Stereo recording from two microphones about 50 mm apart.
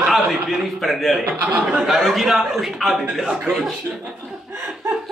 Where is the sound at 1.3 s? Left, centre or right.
Right.